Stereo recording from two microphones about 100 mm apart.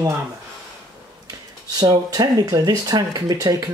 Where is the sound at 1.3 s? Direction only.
40° right (ahead or behind).